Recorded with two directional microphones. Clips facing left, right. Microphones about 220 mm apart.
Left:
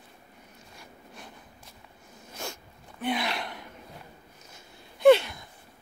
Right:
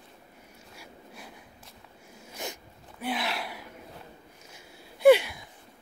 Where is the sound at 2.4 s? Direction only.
15° right (ahead or behind).